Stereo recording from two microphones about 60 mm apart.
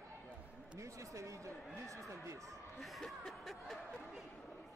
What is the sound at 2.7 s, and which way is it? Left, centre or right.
Speech, centre.